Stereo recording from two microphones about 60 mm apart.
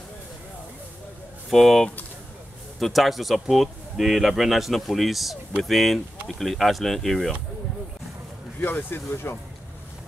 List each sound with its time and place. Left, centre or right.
1.5 s speech: centre
8.9 s speech: left